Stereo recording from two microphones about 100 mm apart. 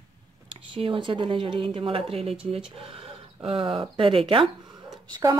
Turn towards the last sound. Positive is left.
turn(degrees=-35)  # may be behind; listen again after turning